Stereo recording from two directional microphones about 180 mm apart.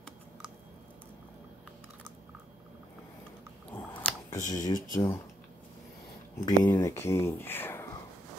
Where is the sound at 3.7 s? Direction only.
10° left (ahead or behind).